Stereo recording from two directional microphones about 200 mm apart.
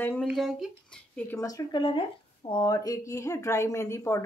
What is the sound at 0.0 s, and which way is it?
Speech, 10° left (ahead or behind).